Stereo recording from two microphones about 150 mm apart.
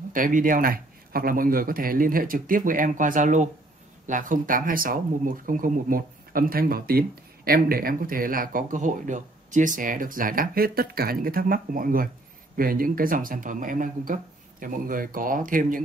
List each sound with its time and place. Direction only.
0.1 s speech: 65° right (ahead or behind)